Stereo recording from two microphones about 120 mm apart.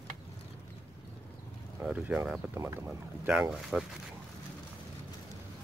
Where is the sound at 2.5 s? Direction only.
20° right (ahead or behind).